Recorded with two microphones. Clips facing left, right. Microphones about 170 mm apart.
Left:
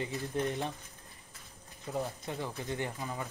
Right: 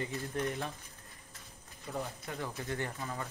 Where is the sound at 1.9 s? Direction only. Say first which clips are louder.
Left 3 dB; 15° left (ahead or behind).